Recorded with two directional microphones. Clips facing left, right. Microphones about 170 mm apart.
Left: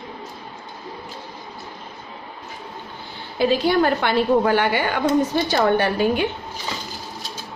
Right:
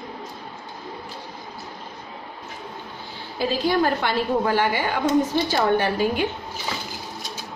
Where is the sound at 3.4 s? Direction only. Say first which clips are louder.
Left 4 dB; 65° left (ahead or behind).